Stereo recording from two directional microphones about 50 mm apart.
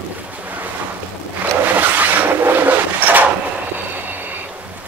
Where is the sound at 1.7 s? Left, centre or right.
Right.